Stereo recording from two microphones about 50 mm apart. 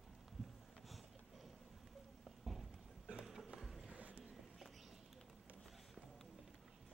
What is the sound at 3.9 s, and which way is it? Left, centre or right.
Music, right.